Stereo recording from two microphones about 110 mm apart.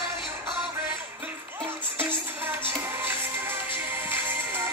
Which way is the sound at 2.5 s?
20° right (ahead or behind).